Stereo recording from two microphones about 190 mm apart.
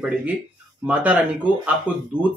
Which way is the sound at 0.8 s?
5° right (ahead or behind).